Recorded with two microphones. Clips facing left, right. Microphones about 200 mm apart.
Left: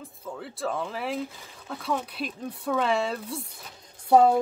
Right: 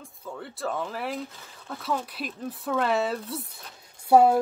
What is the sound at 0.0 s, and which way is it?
Speech, centre (ahead or behind).